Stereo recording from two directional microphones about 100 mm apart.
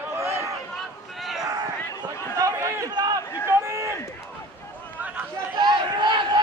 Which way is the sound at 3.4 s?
30° right (ahead or behind).